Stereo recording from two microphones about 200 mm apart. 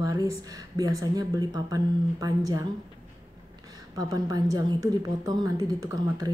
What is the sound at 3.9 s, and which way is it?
A woman's voice, 20° right (ahead or behind).